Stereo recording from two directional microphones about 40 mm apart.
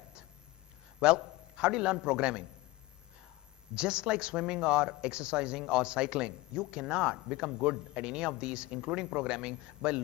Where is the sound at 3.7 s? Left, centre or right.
Right.